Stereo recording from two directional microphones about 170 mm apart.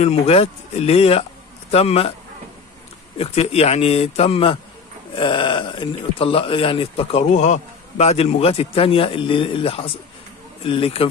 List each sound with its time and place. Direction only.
0.1 s speech: 35° left (ahead or behind)
3.2 s speech: 35° left (ahead or behind)